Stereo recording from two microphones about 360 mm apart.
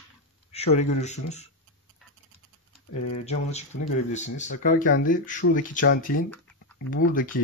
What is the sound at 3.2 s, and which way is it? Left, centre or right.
Speech, centre.